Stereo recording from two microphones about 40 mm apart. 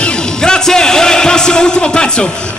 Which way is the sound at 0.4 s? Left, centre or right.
Centre.